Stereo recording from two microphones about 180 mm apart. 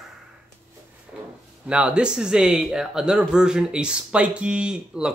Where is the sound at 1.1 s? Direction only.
5° right (ahead or behind).